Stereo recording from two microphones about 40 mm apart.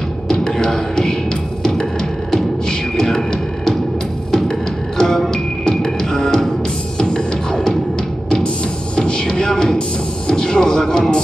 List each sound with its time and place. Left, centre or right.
0.6 s music: centre
8.9 s music: centre